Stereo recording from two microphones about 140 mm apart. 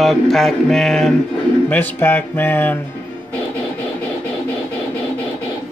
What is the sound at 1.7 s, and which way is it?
Speech, 15° left (ahead or behind).